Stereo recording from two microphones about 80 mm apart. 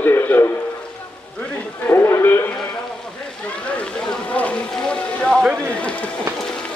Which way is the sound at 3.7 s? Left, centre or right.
Centre.